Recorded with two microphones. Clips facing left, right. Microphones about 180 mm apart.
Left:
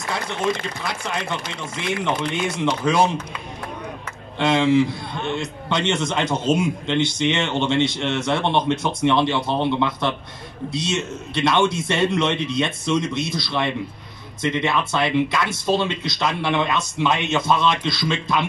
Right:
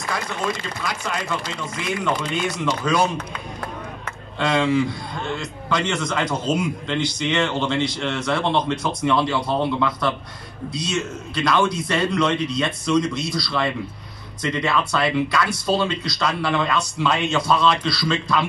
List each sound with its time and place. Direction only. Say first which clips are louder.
0.1 s a man's voice: left 2 dB; 25° left (ahead or behind)
4.4 s a man's voice: left 3 dB; 25° left (ahead or behind)